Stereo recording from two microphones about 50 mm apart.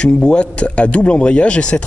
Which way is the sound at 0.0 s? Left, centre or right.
Centre.